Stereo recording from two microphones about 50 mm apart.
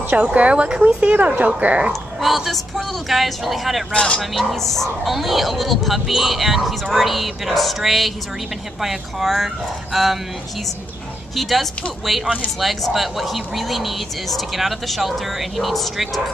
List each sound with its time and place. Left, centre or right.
0.2 s speech: right
1.1 s speech: right
1.9 s speech: centre
3.9 s speech: left
4.2 s speech: centre
11.3 s speech: centre